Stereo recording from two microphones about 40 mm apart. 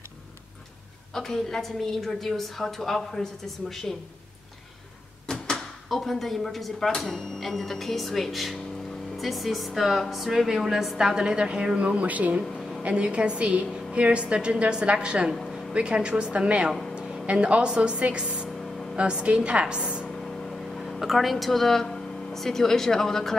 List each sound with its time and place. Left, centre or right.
1.1 s a woman's voice: centre
5.2 s a woman's voice: centre
11.0 s a woman's voice: centre; by 12.4 s right
12.8 s a woman's voice: right
19.6 s a woman's voice: centre
20.2 s a sound: centre
21.8 s speech: centre